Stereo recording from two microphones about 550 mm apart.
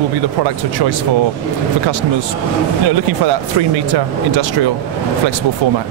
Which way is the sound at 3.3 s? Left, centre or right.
Right.